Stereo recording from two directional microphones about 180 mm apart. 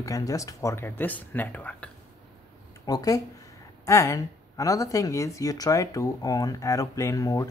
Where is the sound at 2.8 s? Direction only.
20° left (ahead or behind).